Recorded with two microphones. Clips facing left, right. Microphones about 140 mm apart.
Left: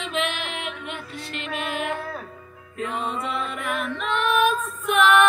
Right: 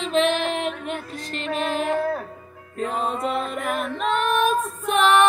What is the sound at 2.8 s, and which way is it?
Female singing, 40° right (ahead or behind).